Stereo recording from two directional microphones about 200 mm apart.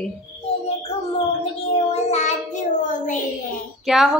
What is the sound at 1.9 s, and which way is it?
Child singing, 35° left (ahead or behind).